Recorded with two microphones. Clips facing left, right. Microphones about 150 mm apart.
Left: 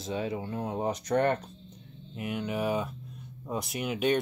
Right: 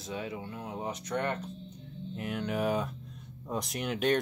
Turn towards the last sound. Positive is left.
turn(degrees=5)  # may be behind; listen again after turning